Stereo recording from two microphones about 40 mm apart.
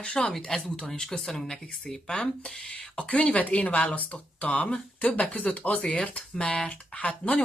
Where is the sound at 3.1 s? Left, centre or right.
Left.